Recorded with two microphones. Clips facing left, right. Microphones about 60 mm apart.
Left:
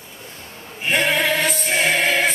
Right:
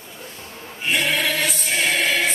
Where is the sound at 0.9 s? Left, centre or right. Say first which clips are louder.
Left 3 dB; left.